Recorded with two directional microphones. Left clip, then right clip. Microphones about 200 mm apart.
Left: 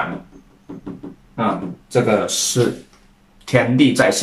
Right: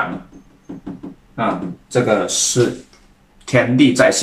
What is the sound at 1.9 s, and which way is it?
Speech, 20° left (ahead or behind).